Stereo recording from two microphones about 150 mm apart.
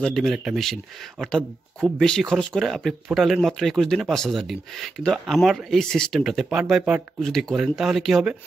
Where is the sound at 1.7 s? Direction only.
5° left (ahead or behind).